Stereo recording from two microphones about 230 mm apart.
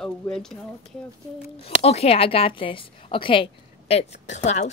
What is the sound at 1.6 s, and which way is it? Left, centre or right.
A woman's voice, left.